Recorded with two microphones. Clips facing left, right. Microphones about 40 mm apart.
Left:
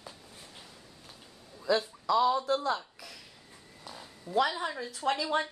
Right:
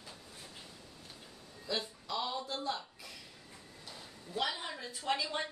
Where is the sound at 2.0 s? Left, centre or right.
Left.